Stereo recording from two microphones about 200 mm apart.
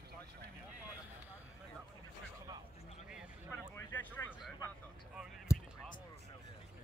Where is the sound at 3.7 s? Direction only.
10° left (ahead or behind).